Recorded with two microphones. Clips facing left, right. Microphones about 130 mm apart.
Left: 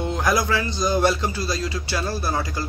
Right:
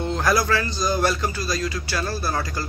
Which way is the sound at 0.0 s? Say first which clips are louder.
Even; 15° left (ahead or behind).